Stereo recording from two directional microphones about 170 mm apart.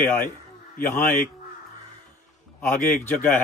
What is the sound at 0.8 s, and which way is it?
Speech, 50° left (ahead or behind).